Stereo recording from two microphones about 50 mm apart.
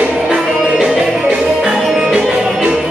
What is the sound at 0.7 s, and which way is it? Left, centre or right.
Music, centre.